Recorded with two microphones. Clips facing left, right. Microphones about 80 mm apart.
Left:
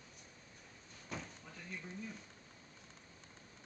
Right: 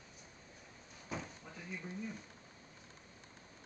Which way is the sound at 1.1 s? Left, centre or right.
Centre.